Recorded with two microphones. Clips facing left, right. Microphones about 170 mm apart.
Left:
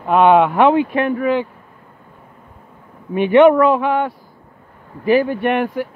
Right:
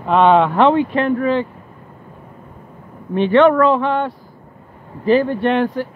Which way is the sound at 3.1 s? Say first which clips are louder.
Left 2 dB; 15° left (ahead or behind).